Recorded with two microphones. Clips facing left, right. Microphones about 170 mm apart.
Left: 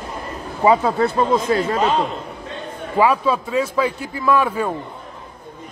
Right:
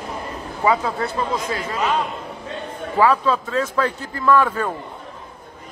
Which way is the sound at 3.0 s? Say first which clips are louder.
Left 1 dB; 10° left (ahead or behind).